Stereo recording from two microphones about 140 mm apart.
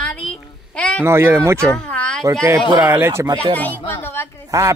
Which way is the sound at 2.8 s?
15° right (ahead or behind).